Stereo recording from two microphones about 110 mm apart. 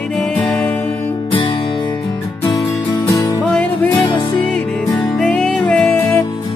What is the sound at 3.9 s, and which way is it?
Music, 45° left (ahead or behind).